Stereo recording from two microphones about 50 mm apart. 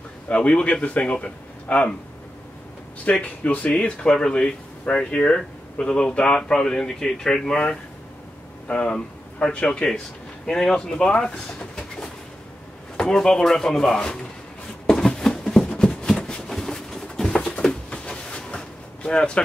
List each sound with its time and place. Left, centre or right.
0.3 s speech: left
3.1 s speech: left
6.5 s speech: centre
8.6 s speech: centre
14.9 s a sound: centre
16.4 s a sound: centre
19.0 s speech: centre